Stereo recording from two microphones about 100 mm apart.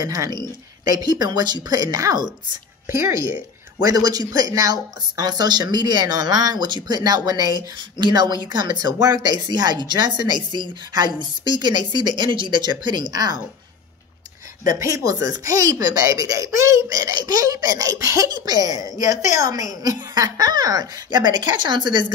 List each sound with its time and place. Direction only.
0.0 s speech: 40° right (ahead or behind)
3.0 s speech: 25° right (ahead or behind)
3.8 s a woman's voice: 40° right (ahead or behind)
14.8 s a woman's voice: 30° right (ahead or behind); by 22.0 s 50° right (ahead or behind)